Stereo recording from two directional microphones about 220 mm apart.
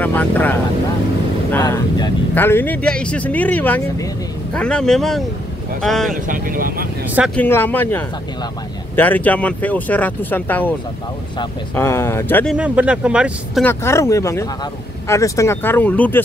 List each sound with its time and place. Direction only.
0.0 s speech: 5° left (ahead or behind)
6.2 s speech: 40° right (ahead or behind)
7.3 s speech: 10° left (ahead or behind)
11.7 s speech: 10° left (ahead or behind)
12.5 s speech: 5° right (ahead or behind)
13.7 s speech: 15° left (ahead or behind)